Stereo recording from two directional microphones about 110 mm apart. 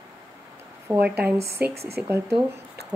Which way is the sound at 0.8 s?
15° right (ahead or behind).